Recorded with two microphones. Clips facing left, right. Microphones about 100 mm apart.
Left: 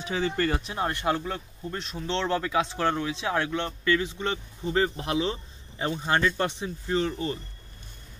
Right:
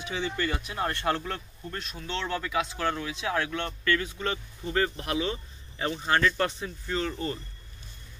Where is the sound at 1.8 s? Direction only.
25° left (ahead or behind).